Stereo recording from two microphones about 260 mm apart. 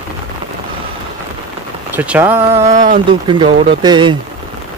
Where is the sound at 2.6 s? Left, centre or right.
Right.